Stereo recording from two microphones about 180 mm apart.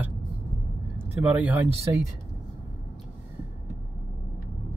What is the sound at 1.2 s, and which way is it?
Speech, 10° right (ahead or behind).